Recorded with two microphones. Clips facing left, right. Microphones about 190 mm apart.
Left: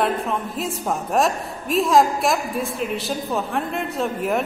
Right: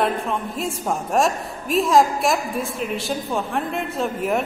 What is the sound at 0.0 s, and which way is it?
A woman's voice, centre (ahead or behind).